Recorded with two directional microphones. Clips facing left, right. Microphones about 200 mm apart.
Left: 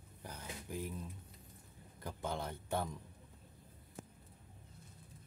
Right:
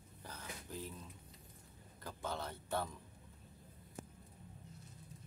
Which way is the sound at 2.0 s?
15° left (ahead or behind).